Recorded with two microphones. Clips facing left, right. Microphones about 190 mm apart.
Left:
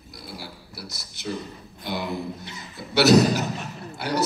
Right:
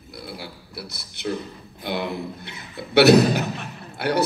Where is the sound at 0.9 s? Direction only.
60° right (ahead or behind).